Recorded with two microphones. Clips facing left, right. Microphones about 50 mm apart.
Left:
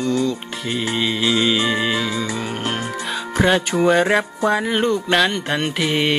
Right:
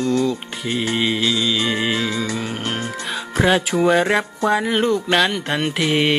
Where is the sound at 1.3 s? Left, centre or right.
Left.